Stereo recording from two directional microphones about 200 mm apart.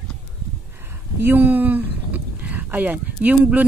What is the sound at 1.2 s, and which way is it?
Speech, 10° right (ahead or behind).